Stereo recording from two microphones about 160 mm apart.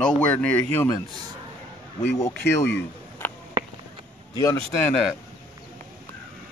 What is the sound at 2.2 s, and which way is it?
Speech, 15° left (ahead or behind).